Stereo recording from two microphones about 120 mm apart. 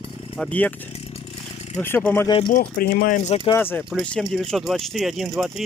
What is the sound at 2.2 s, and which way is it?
Speech, 45° left (ahead or behind).